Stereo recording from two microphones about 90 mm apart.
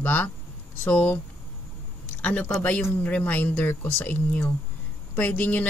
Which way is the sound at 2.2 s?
15° left (ahead or behind).